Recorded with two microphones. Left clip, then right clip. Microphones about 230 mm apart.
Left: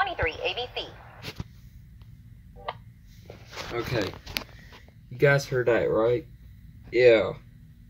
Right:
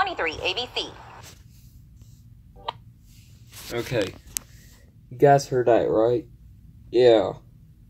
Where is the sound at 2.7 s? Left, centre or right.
Right.